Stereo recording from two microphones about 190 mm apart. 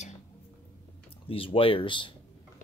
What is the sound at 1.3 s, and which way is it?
Speech, 30° left (ahead or behind).